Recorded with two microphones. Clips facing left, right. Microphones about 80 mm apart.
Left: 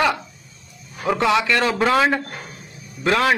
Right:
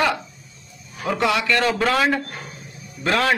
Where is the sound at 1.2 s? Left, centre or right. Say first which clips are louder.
Left 1 dB; left.